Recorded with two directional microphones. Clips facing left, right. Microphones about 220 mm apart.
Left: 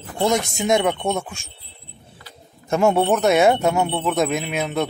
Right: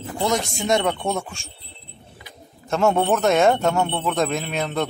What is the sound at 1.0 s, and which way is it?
Speech, centre (ahead or behind).